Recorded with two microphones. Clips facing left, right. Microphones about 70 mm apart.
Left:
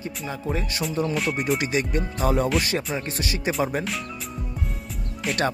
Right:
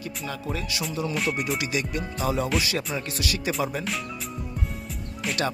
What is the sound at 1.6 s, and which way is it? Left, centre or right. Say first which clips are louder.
Speech: left 4 dB; left.